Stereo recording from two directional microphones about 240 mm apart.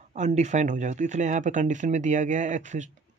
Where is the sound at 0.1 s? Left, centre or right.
Right.